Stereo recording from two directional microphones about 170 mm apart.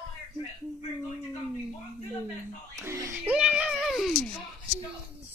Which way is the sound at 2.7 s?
20° right (ahead or behind).